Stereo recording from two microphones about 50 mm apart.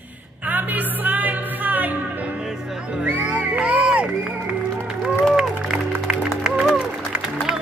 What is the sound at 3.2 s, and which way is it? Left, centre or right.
Music, right.